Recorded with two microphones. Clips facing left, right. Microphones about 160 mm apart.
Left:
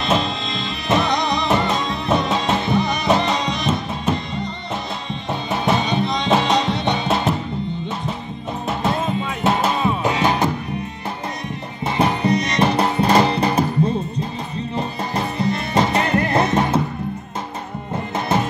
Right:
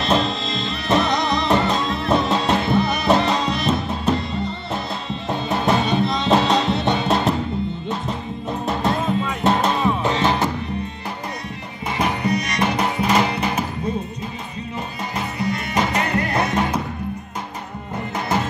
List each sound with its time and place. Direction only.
0.0 s music: centre (ahead or behind)
5.5 s music: centre (ahead or behind)
9.4 s music: 5° left (ahead or behind)
12.0 s music: 25° left (ahead or behind)
14.8 s music: 30° left (ahead or behind)
18.1 s music: 20° left (ahead or behind)